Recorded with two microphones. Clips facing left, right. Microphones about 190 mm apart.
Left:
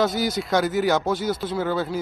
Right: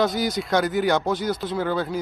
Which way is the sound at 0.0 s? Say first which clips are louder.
Even; centre (ahead or behind).